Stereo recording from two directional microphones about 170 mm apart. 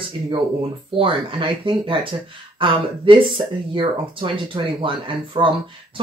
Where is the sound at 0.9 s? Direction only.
30° right (ahead or behind).